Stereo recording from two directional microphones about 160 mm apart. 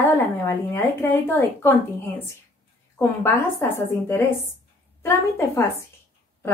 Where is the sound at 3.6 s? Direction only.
15° left (ahead or behind).